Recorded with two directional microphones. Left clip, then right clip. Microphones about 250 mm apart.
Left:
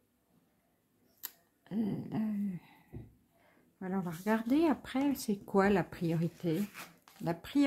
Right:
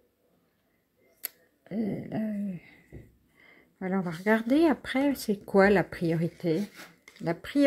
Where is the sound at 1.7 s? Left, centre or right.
Centre.